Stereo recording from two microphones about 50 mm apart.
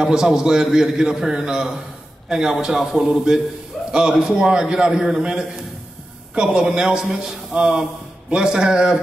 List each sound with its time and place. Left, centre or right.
0.0 s a man's voice: centre